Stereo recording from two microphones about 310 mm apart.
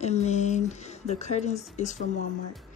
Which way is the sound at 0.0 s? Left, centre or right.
Left.